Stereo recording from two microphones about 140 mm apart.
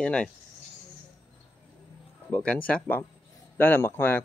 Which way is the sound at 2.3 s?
10° left (ahead or behind).